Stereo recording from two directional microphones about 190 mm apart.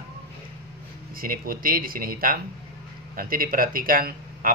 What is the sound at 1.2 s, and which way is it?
Speech, 50° right (ahead or behind).